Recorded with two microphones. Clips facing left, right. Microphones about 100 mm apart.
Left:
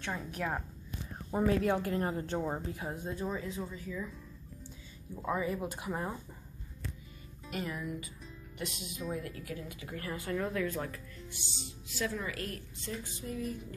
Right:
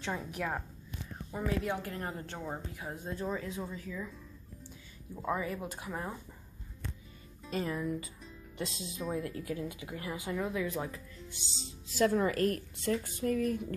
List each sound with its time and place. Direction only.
0.1 s speech: 10° right (ahead or behind)
0.4 s speech: 5° left (ahead or behind)
1.3 s a woman's voice: 35° left (ahead or behind)
2.9 s speech: 5° left (ahead or behind)
5.1 s speech: centre (ahead or behind)
7.5 s speech: 30° right (ahead or behind); by 11.0 s 15° right (ahead or behind)
11.6 s a woman's voice: 40° right (ahead or behind)
12.8 s speech: 55° right (ahead or behind)